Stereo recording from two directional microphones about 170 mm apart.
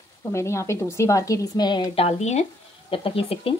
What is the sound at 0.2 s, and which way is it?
A woman's voice, 15° left (ahead or behind).